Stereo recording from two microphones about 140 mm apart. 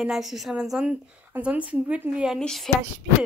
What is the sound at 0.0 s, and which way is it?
Speech, centre (ahead or behind).